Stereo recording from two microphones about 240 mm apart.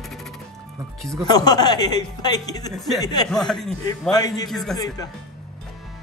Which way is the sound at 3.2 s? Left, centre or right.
Centre.